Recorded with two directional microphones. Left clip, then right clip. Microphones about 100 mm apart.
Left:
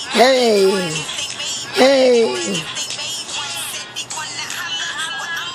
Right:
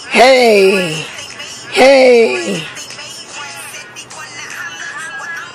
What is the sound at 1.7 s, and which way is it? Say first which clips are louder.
Music: right 6 dB; 10° right (ahead or behind).